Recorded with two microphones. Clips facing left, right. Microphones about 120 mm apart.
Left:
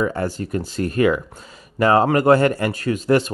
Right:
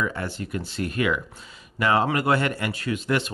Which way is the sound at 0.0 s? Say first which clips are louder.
Left 6 dB; 40° left (ahead or behind).